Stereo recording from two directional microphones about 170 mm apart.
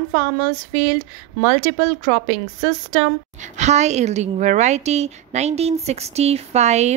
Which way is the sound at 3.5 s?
40° right (ahead or behind).